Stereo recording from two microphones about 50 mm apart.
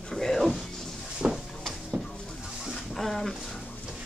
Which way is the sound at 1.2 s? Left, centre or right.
Right.